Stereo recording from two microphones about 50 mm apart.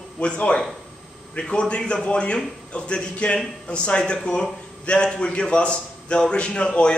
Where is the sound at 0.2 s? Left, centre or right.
Left.